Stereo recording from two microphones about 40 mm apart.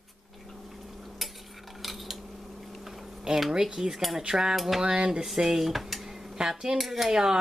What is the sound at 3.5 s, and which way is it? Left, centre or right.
Speech, centre.